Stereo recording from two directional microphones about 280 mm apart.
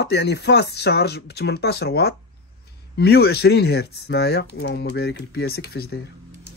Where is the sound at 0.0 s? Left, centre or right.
Left.